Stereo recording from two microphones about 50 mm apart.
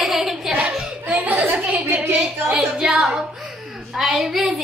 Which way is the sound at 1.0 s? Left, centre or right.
Right.